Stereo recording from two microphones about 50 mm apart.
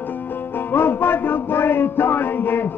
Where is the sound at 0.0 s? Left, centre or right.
Left.